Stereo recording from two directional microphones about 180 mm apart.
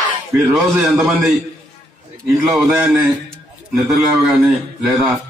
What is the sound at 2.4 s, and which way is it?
Speech, 5° right (ahead or behind).